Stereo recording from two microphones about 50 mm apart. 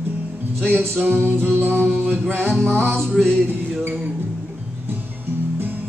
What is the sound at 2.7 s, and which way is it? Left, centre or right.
Music, centre.